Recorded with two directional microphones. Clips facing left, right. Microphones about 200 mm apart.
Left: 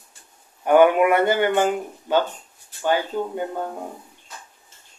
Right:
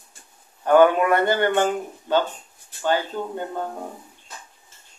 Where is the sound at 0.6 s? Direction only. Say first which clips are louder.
Left 1 dB; 15° left (ahead or behind).